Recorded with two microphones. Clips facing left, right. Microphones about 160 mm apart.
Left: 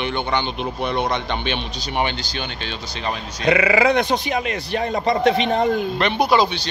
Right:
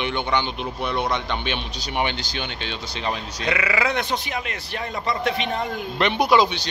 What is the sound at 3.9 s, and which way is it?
Speech, 15° left (ahead or behind).